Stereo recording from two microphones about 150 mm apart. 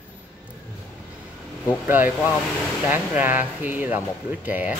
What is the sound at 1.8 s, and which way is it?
Speech, 15° right (ahead or behind).